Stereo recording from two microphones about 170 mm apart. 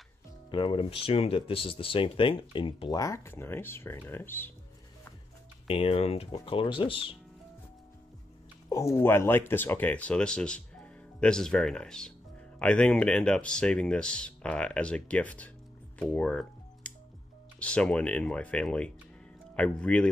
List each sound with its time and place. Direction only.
0.5 s speech: 30° left (ahead or behind); by 4.5 s 10° left (ahead or behind)
5.7 s speech: 35° left (ahead or behind)
8.6 s speech: 20° left (ahead or behind)
16.0 s music: 5° left (ahead or behind)
17.6 s speech: 5° left (ahead or behind)